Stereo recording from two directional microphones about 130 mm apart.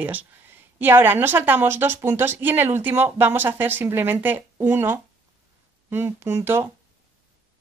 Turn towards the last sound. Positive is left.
turn(degrees=-20)  # may be behind; listen again after turning